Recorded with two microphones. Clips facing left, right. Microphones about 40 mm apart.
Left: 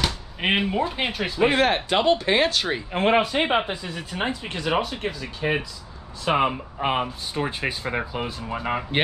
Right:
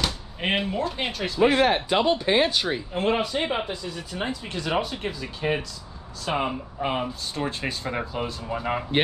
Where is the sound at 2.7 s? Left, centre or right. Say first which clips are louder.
Left 3 dB; left.